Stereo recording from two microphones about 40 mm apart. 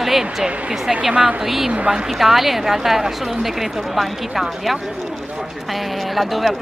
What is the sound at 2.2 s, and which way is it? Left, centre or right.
A woman's voice, centre.